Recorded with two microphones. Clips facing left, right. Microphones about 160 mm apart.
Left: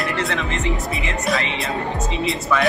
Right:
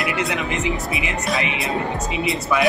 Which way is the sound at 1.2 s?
Centre (ahead or behind).